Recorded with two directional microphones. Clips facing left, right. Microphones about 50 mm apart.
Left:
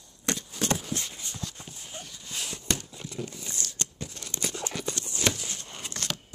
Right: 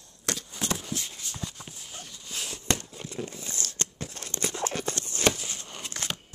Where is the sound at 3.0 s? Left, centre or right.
Right.